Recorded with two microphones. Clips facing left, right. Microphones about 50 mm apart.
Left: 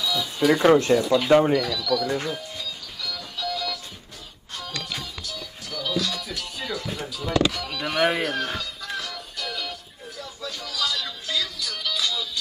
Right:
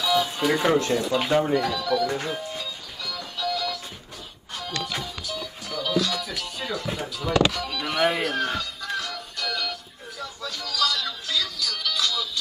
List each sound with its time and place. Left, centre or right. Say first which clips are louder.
0.0 s music: right 1 dB; right
0.5 s speech: left 6 dB; left
1.5 s speech: even; right
3.3 s music: right 2 dB; centre